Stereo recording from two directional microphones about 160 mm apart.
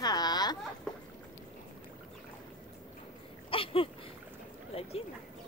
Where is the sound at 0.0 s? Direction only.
25° left (ahead or behind).